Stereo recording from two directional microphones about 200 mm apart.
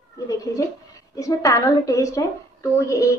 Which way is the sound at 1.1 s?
15° left (ahead or behind).